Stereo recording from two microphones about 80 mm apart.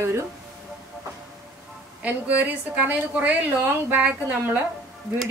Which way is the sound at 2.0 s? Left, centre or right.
Centre.